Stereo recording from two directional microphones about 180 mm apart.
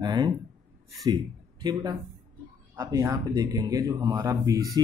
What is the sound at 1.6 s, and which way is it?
Speech, 25° right (ahead or behind).